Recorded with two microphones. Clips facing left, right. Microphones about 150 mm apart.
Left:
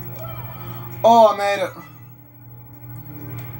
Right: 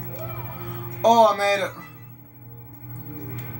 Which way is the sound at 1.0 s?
20° left (ahead or behind).